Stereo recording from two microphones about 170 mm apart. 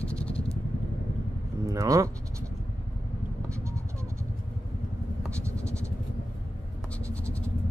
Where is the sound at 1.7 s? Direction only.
20° right (ahead or behind).